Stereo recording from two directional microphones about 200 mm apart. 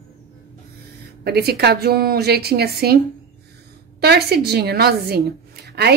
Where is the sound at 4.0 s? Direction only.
55° right (ahead or behind).